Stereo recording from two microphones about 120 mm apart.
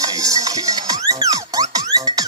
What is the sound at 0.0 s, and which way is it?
Music, 30° right (ahead or behind).